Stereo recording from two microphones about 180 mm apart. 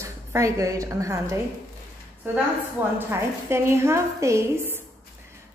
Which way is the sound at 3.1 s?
15° right (ahead or behind).